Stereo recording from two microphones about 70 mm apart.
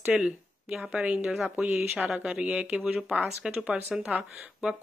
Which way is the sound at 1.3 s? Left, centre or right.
Centre.